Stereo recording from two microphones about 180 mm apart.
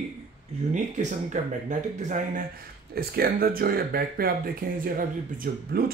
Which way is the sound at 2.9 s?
55° right (ahead or behind).